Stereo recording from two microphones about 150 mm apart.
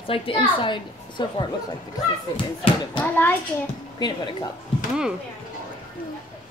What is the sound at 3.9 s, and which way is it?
Speech, 30° left (ahead or behind).